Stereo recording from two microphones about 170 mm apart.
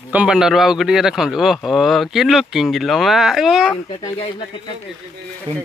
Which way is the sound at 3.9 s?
30° left (ahead or behind).